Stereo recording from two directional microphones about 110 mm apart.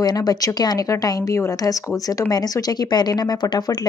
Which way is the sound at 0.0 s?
35° left (ahead or behind).